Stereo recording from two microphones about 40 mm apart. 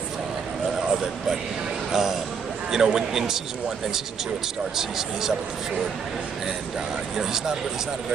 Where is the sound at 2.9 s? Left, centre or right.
Centre.